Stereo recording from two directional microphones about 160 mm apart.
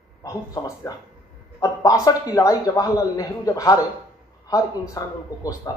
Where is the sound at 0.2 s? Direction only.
20° left (ahead or behind).